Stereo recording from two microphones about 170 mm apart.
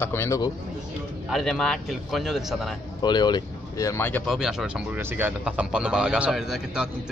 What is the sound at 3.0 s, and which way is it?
Speech, 25° left (ahead or behind).